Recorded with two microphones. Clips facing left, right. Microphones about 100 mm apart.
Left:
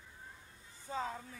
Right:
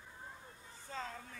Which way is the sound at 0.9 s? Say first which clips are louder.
Left 5 dB; 15° left (ahead or behind).